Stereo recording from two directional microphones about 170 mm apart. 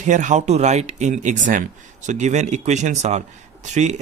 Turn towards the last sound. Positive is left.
turn(degrees=-45)  # may be behind; listen again after turning